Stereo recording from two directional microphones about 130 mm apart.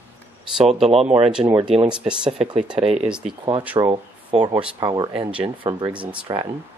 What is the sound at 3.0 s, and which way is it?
Speech, 5° right (ahead or behind).